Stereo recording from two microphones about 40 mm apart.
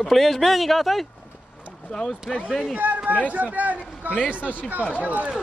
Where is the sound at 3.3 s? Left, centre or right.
Right.